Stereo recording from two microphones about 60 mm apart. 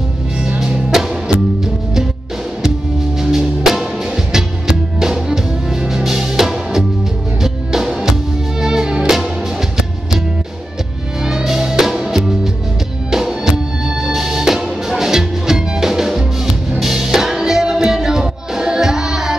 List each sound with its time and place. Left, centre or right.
0.6 s music: centre
3.2 s music: centre
11.2 s music: centre